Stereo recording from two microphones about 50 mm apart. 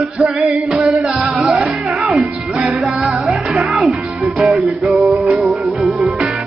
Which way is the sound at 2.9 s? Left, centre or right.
Right.